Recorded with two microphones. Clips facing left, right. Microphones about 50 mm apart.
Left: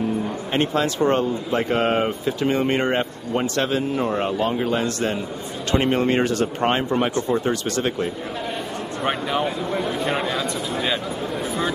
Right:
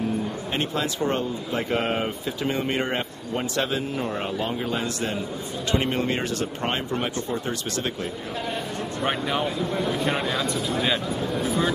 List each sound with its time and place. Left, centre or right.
1.0 s speech: left
1.7 s speech: centre
3.5 s speech: centre
4.0 s speech: centre
5.8 s speech: left
9.0 s speech: centre
9.6 s speech: centre